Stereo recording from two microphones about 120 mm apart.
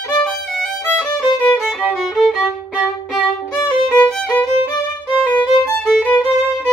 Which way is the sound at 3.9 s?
10° left (ahead or behind).